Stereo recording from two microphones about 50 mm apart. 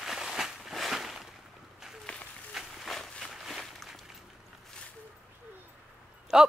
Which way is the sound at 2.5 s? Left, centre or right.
Centre.